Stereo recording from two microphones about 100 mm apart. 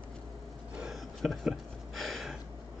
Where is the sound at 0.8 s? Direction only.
5° right (ahead or behind).